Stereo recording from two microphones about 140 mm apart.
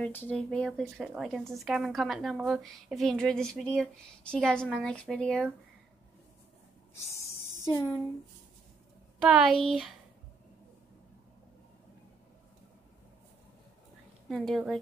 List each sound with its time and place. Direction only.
0.0 s speech: 10° left (ahead or behind)
7.1 s a sound: 20° left (ahead or behind)
9.2 s speech: 5° right (ahead or behind)
14.3 s speech: centre (ahead or behind)